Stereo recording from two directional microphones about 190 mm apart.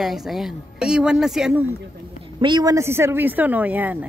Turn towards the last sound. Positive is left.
turn(degrees=-10)  # may be behind; listen again after turning